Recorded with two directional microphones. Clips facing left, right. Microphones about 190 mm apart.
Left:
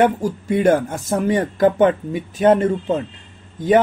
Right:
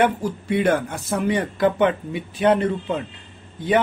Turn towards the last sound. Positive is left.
turn(degrees=40)  # may be behind; listen again after turning